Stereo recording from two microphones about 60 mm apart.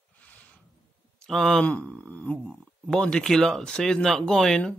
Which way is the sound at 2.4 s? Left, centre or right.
Centre.